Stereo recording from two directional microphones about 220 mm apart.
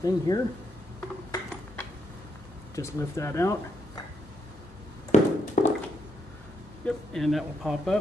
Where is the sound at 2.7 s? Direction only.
15° left (ahead or behind).